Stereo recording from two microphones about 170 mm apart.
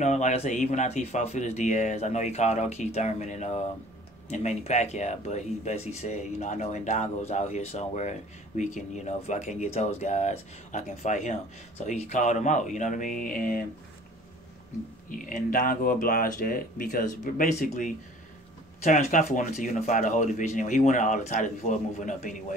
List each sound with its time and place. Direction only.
0.0 s speech: 45° left (ahead or behind)
15.0 s speech: 50° left (ahead or behind)